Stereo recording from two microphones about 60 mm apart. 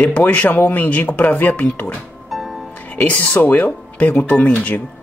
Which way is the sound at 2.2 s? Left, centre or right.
Centre.